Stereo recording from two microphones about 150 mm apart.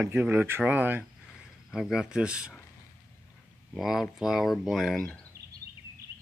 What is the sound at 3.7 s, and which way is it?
Speech, centre (ahead or behind).